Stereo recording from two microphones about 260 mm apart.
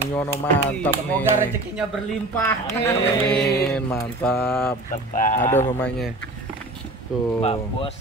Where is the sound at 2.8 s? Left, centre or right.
Centre.